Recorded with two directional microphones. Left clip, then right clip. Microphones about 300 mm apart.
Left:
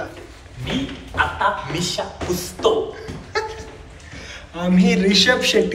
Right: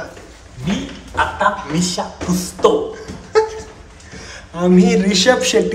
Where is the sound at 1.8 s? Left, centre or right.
Right.